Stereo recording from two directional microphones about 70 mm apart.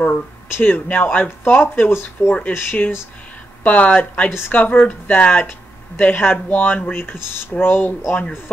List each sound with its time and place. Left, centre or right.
0.5 s speech: left
3.6 s speech: centre